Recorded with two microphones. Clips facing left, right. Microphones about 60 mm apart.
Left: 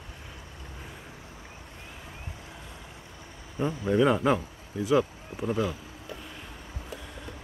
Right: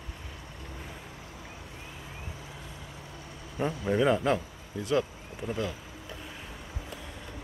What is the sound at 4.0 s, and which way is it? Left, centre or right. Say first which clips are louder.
Speech: left 2 dB; centre.